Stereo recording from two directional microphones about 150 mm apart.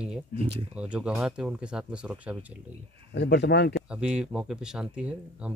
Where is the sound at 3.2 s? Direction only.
90° left.